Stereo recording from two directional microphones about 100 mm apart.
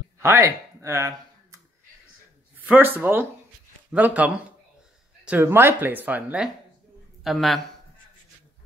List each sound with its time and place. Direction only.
0.2 s a sound: 30° right (ahead or behind)
2.6 s speech: 15° right (ahead or behind)
5.4 s speech: 20° right (ahead or behind)
7.2 s speech: centre (ahead or behind)